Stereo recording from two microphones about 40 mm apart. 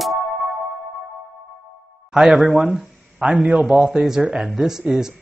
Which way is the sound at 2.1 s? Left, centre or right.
Centre.